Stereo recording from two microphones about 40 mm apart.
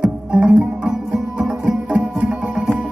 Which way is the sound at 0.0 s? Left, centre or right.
Centre.